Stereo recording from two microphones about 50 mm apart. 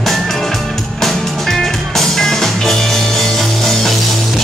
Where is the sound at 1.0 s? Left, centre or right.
Centre.